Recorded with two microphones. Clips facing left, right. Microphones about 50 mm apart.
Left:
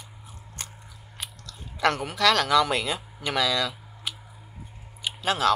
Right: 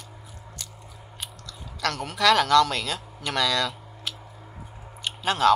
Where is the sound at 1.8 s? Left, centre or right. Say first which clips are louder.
Left 5 dB; left.